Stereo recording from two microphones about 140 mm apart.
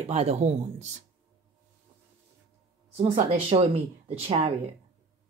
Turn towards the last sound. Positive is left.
turn(degrees=-45)  # may be behind; listen again after turning